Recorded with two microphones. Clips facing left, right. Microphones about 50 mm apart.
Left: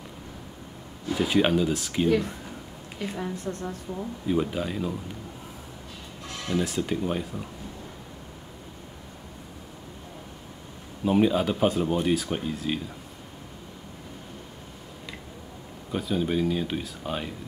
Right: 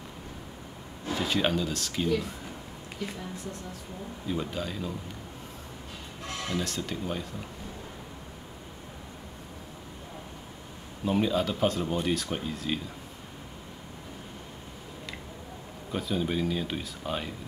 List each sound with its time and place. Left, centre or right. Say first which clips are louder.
1.1 s speech: left 5 dB; centre
2.0 s a woman's voice: left 6 dB; left
4.3 s speech: left 6 dB; centre
6.5 s speech: left 7 dB; centre
11.1 s speech: left 4 dB; centre
15.9 s speech: left 3 dB; centre